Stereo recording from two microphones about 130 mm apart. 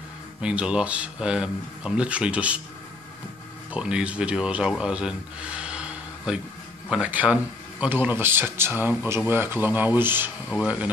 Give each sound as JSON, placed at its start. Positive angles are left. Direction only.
{"t": 0.4, "sound": "speech", "side_deg": -10}
{"t": 3.7, "sound": "speech", "side_deg": -10}